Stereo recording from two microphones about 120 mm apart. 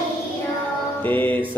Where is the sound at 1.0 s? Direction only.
15° left (ahead or behind).